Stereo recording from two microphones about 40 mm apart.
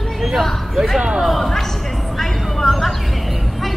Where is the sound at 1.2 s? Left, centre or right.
Centre.